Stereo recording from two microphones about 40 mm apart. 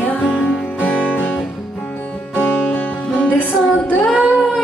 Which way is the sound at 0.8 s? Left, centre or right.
Left.